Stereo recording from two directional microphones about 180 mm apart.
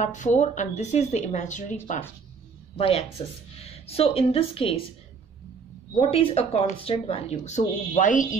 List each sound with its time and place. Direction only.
0.0 s a woman's voice: 45° left (ahead or behind)
2.8 s speech: 30° left (ahead or behind)
5.9 s speech: 35° left (ahead or behind)